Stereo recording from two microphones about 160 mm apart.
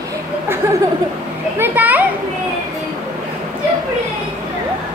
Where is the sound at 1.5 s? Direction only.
10° right (ahead or behind).